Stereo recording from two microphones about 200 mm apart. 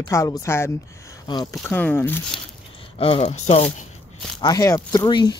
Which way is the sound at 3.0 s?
30° left (ahead or behind).